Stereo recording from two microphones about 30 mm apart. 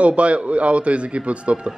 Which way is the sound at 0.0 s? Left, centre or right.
Right.